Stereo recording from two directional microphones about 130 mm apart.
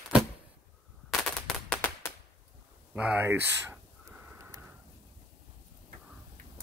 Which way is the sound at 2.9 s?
10° right (ahead or behind).